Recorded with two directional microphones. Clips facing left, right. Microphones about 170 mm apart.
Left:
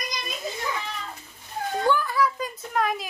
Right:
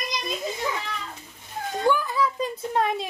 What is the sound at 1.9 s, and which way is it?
A woman's voice, 15° right (ahead or behind).